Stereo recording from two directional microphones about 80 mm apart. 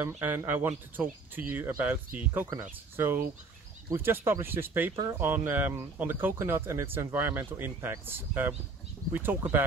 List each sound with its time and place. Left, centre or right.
0.2 s speech: right